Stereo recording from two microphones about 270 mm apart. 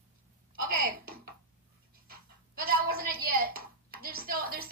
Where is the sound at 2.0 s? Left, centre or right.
Right.